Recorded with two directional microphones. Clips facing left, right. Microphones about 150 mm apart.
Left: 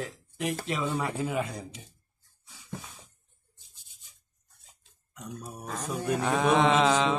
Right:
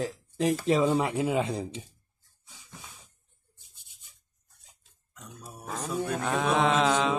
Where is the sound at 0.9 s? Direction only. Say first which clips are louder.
Right 5 dB; 20° right (ahead or behind).